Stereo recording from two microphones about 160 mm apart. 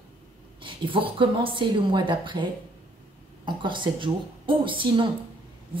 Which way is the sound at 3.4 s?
30° right (ahead or behind).